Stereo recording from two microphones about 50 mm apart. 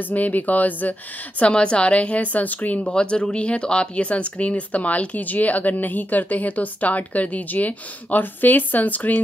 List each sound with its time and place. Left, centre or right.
0.1 s speech: left
1.4 s speech: left
2.8 s speech: left